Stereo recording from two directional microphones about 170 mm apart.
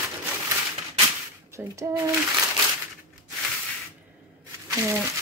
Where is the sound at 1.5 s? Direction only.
20° right (ahead or behind).